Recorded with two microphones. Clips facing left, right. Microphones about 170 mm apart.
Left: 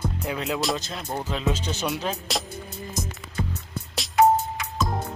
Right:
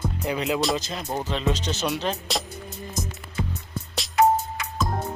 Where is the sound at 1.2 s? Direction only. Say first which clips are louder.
Even; 5° left (ahead or behind).